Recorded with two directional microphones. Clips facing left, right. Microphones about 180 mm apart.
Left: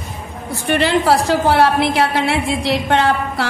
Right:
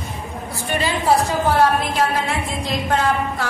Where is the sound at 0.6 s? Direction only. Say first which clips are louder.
Left 4 dB; 70° left (ahead or behind).